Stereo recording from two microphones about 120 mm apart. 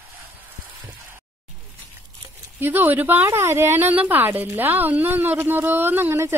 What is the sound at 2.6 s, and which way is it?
A woman's voice, 15° right (ahead or behind).